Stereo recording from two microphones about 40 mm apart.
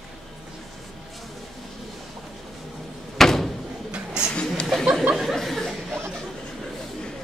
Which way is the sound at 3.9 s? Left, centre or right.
Centre.